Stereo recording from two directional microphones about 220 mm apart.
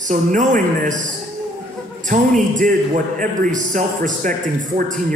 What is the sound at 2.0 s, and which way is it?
A man's voice, 35° right (ahead or behind).